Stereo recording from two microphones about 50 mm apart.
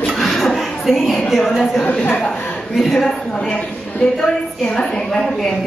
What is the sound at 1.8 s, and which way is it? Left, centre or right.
Speech, left.